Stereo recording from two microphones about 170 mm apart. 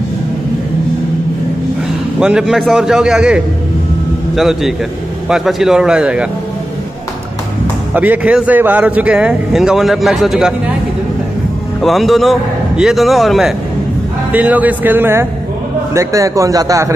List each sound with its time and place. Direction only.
2.1 s speech: 5° right (ahead or behind)
7.9 s speech: 10° right (ahead or behind)
11.8 s a man's voice: centre (ahead or behind); by 16.9 s 20° right (ahead or behind)